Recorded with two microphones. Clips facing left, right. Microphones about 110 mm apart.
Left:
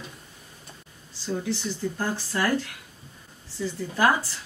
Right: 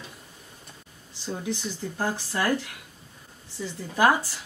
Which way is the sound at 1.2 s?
20° right (ahead or behind).